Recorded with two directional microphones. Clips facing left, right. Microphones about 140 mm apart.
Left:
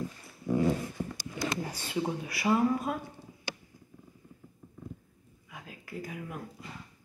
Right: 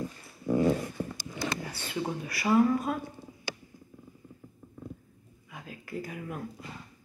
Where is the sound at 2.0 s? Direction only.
10° left (ahead or behind).